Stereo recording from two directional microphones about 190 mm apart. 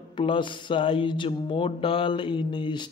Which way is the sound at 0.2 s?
25° left (ahead or behind).